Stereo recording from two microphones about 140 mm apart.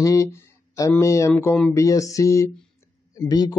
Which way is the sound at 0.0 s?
20° left (ahead or behind).